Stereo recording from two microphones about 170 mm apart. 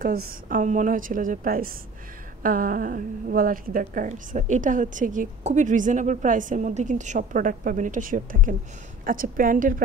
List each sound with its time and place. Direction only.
0.0 s a woman's voice: 60° right (ahead or behind)